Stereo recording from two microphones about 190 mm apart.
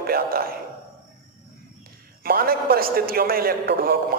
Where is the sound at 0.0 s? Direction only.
50° right (ahead or behind).